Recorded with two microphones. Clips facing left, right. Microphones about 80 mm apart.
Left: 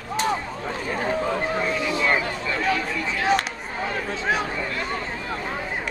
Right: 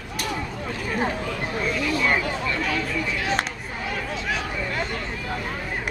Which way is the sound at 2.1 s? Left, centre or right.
Centre.